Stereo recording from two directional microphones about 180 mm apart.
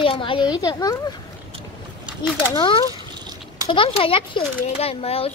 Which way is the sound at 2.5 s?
25° left (ahead or behind).